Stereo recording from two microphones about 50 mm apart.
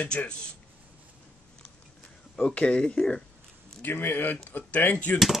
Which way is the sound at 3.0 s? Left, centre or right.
Centre.